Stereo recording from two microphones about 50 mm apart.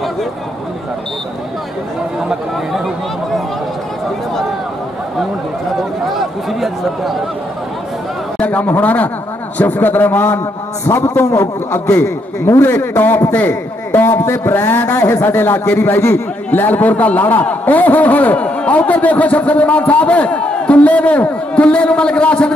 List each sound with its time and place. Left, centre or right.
6.0 s speech: centre
8.4 s a sound: left
8.6 s a man's voice: left
10.9 s a sound: left
11.3 s a man's voice: left
12.6 s a man's voice: left
14.2 s a man's voice: left
14.5 s a sound: left
15.8 s a man's voice: left
16.4 s a man's voice: left